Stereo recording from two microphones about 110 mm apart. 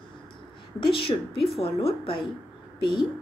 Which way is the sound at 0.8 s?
55° left (ahead or behind).